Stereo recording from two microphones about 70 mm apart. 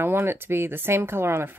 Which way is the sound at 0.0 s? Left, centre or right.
Right.